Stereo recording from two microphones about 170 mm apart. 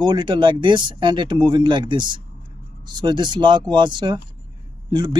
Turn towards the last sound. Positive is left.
turn(degrees=-25)  # may be behind; listen again after turning